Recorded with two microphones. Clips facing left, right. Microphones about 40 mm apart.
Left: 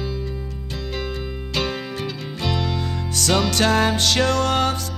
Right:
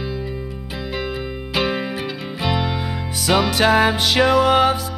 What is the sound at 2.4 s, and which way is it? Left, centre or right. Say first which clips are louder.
Music: right 2 dB; centre.